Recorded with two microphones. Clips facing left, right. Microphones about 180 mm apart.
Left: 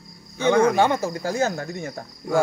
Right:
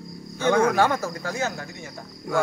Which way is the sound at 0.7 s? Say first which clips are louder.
Left 2 dB; 20° left (ahead or behind).